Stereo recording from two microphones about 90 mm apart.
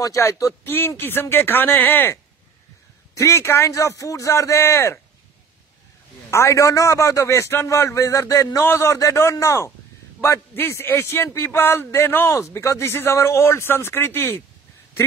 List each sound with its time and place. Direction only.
0.0 s a man's voice: 35° left (ahead or behind)
3.2 s a man's voice: 30° left (ahead or behind)
6.3 s a man's voice: 35° left (ahead or behind)